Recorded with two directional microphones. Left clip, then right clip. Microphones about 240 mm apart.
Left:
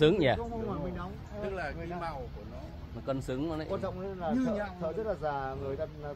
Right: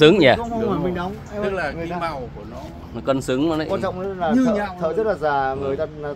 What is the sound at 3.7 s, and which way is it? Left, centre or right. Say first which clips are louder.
Speech: right 12 dB; centre.